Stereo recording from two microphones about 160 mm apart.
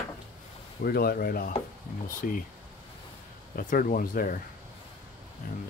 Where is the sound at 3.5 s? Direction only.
60° left (ahead or behind).